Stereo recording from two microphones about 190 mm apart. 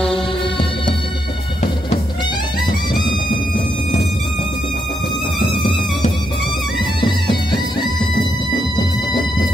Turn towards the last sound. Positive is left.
turn(degrees=25)  # may be behind; listen again after turning